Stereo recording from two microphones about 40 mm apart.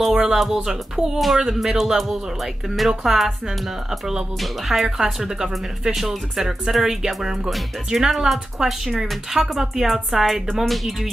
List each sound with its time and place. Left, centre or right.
0.1 s speech: centre
1.2 s speech: centre
4.8 s speech: centre
8.6 s speech: centre
8.9 s speech: centre
9.3 s speech: centre